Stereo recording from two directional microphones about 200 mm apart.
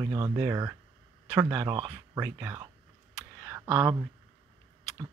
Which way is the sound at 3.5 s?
10° right (ahead or behind).